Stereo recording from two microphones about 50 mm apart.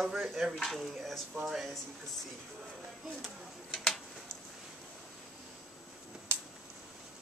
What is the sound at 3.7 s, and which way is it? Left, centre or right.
Tick-tock, centre.